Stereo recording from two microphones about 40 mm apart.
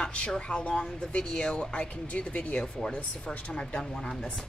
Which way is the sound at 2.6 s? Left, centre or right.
Left.